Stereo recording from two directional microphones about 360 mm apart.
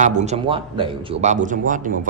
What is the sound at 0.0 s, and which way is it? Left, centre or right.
Speech, centre.